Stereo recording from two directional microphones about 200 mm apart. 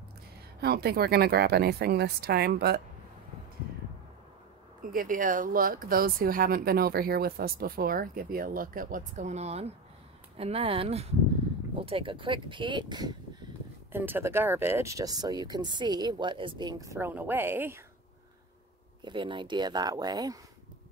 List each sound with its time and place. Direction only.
0.6 s speech: 50° right (ahead or behind)
4.8 s speech: 45° right (ahead or behind); by 13.1 s 20° right (ahead or behind)
13.9 s speech: 10° right (ahead or behind)
19.0 s speech: 25° right (ahead or behind)